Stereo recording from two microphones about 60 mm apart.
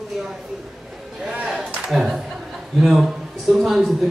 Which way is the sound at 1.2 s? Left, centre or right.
Centre.